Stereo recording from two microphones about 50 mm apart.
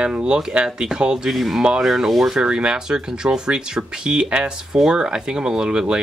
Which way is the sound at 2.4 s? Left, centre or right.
Centre.